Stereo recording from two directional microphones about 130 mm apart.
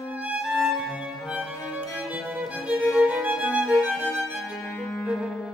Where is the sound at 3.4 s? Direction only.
5° right (ahead or behind).